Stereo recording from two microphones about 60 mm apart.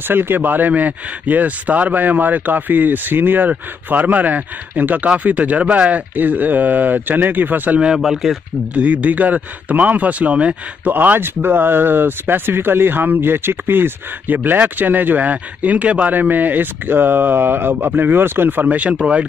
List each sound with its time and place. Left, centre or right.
0.1 s a man's voice: right
7.8 s speech: centre
8.7 s a man's voice: right